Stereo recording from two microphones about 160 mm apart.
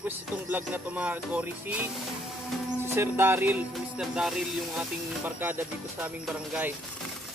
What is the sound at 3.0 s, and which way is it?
Music, 15° right (ahead or behind).